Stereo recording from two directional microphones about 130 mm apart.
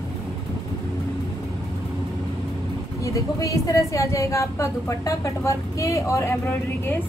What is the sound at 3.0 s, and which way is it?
A woman's voice, 25° left (ahead or behind).